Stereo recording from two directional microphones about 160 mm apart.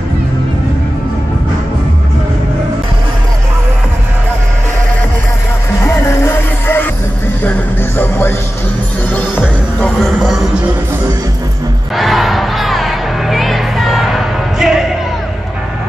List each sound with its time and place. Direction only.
5.8 s music: 15° left (ahead or behind)
8.0 s music: 15° left (ahead or behind)
9.8 s a sound: 5° left (ahead or behind)
11.9 s crowd: centre (ahead or behind)